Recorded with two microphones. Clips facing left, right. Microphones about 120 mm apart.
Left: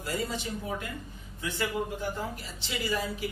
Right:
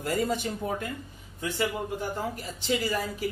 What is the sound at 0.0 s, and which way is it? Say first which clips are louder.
Speech: right 5 dB; 50° right (ahead or behind).